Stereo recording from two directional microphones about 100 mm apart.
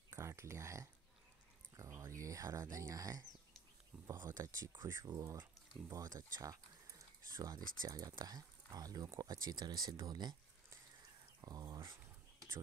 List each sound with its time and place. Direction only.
0.1 s speech: 30° right (ahead or behind)
11.4 s speech: 40° right (ahead or behind)